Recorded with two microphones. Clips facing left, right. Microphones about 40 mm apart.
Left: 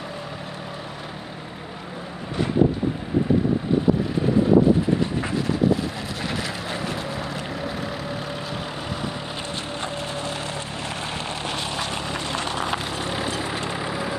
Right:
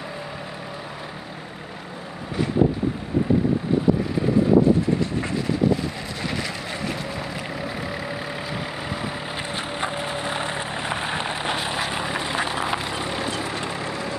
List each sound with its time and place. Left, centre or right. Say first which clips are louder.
6.2 s vehicle: even; centre
9.8 s a sound: right 3 dB; centre
13.0 s vehicle: even; centre